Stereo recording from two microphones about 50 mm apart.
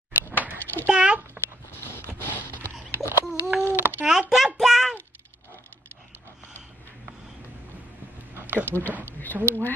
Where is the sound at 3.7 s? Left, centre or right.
Right.